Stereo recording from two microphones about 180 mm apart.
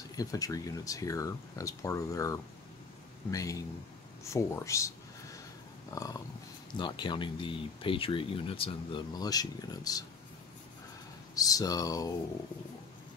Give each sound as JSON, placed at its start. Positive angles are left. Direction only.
{"t": 0.1, "sound": "speech", "side_deg": 20}
{"t": 5.9, "sound": "a sound", "side_deg": 20}
{"t": 6.8, "sound": "speech", "side_deg": 25}
{"t": 11.3, "sound": "speech", "side_deg": 20}